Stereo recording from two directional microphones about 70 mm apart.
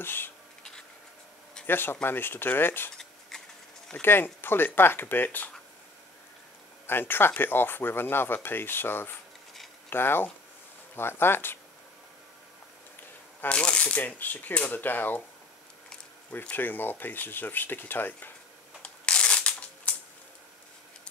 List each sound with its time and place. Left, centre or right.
0.0 s speech: left
1.7 s speech: left
3.0 s a sound: centre
4.0 s speech: left
6.9 s speech: left
13.5 s speech: centre
16.3 s speech: left
18.8 s shuffling cards: centre